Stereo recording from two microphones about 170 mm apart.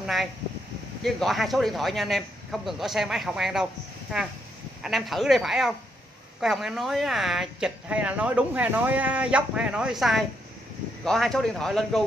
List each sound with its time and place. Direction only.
0.0 s speech: centre (ahead or behind)
4.8 s speech: centre (ahead or behind)